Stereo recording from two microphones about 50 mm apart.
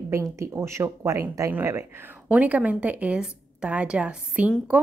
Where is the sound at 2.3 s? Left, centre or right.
Right.